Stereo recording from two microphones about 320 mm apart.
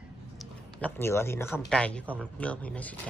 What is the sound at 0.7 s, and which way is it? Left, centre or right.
Speech, centre.